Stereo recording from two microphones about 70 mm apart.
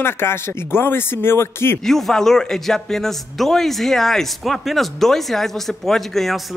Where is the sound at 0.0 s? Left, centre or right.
Left.